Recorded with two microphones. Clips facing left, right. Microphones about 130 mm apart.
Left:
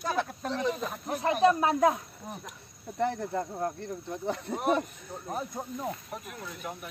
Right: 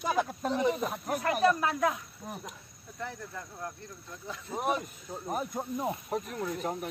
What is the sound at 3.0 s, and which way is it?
Speech, 65° left (ahead or behind).